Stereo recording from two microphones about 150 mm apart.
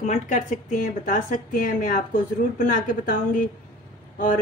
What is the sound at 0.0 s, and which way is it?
Speech, 55° left (ahead or behind).